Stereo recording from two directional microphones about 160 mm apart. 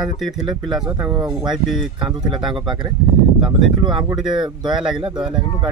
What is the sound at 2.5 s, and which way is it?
Speech, 30° right (ahead or behind).